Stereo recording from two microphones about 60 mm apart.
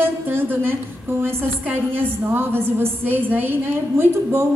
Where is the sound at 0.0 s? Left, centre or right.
Right.